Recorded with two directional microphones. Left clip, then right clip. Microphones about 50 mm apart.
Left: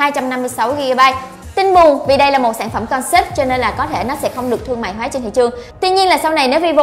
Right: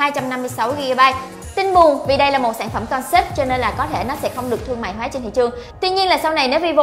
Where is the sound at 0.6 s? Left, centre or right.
Left.